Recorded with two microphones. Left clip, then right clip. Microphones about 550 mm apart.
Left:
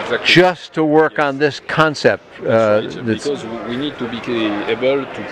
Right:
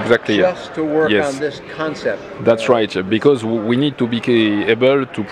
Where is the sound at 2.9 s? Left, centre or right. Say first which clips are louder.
Right 6 dB; right.